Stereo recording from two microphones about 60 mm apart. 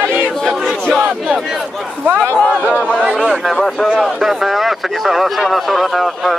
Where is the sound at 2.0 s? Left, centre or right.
Right.